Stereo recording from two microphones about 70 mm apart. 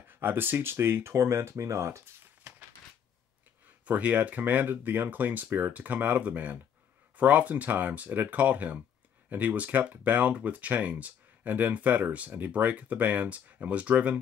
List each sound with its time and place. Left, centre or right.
0.1 s speech: right
3.8 s speech: right